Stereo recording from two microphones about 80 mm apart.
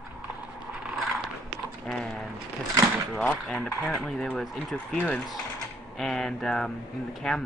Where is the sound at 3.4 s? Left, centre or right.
Centre.